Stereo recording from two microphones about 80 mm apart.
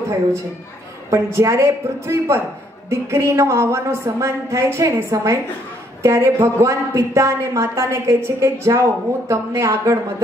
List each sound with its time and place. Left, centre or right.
1.1 s a woman's voice: right